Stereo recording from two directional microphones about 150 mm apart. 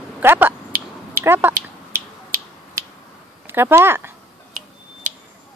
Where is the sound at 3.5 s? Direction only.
15° right (ahead or behind).